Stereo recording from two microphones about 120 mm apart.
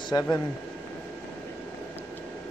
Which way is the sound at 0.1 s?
35° left (ahead or behind).